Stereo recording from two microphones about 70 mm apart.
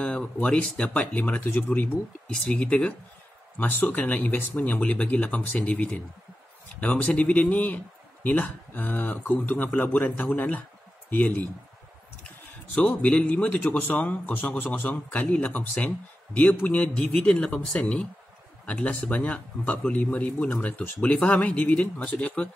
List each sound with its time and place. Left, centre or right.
0.0 s a man's voice: centre
3.5 s a man's voice: left
12.7 s a man's voice: centre